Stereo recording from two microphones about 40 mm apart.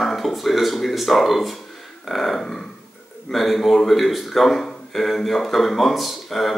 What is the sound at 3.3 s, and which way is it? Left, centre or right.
Speech, centre.